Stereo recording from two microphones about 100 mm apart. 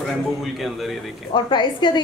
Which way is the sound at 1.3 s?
50° left (ahead or behind).